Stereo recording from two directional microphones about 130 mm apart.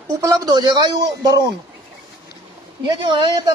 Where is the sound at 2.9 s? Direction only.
40° right (ahead or behind).